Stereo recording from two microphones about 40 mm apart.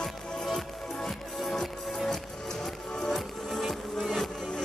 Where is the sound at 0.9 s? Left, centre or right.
Centre.